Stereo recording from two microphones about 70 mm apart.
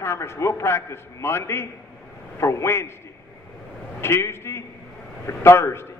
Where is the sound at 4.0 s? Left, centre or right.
Left.